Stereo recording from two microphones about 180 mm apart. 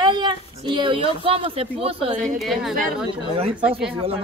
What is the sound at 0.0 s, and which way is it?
Speech, 25° right (ahead or behind).